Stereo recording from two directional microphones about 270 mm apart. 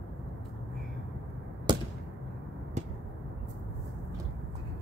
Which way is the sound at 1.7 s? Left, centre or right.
Centre.